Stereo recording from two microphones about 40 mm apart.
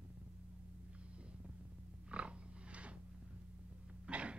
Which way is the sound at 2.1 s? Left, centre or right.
Right.